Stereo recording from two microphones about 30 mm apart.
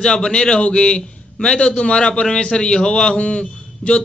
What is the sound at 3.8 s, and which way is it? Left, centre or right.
Speech, left.